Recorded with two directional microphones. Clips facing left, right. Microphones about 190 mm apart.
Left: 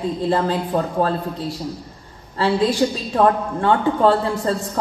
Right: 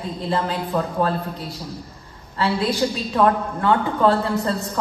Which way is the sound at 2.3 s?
30° left (ahead or behind).